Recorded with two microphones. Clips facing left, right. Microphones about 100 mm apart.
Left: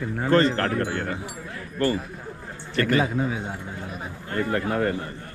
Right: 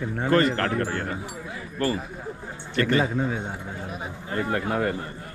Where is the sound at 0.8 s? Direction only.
40° right (ahead or behind).